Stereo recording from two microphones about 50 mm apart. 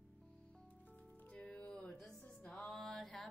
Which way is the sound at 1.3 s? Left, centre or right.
Left.